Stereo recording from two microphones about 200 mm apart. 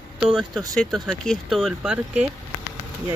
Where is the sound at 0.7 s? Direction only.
Centre (ahead or behind).